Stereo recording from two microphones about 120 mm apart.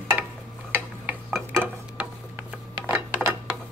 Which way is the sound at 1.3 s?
Centre (ahead or behind).